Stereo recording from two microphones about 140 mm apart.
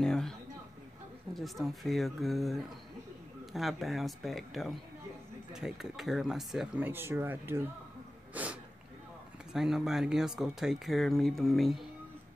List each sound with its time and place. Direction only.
0.0 s speech: 5° left (ahead or behind)
6.8 s speech: 15° right (ahead or behind); by 11.8 s centre (ahead or behind)